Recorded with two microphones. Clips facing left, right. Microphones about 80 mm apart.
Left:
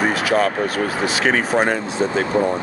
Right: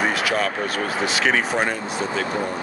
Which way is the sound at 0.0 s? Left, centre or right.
Left.